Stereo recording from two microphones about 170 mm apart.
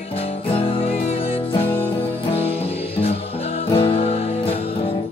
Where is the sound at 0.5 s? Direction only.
35° left (ahead or behind).